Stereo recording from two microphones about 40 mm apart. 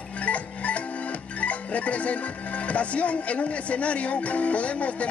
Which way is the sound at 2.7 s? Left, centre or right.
Left.